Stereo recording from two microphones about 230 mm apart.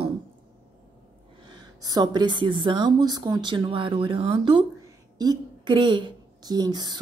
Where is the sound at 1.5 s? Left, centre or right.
Centre.